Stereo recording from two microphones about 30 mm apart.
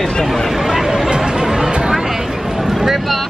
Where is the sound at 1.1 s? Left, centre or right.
Right; by 3.2 s centre.